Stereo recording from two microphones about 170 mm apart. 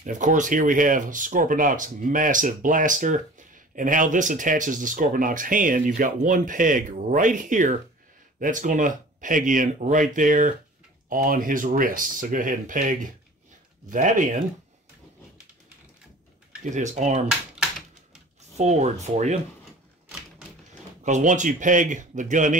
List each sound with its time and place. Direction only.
0.0 s speech: 50° right (ahead or behind)
16.7 s speech: 45° right (ahead or behind)
17.3 s typewriter: 5° right (ahead or behind)
18.6 s speech: 40° right (ahead or behind)
21.0 s speech: 45° right (ahead or behind)